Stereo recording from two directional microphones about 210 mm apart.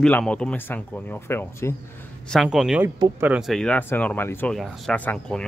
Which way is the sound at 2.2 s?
Centre (ahead or behind).